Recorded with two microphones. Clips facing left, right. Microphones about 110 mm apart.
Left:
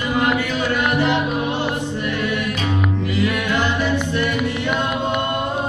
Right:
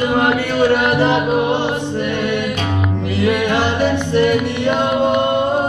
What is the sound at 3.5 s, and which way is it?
Music, 30° right (ahead or behind).